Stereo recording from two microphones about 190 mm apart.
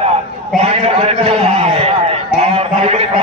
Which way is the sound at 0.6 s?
35° right (ahead or behind).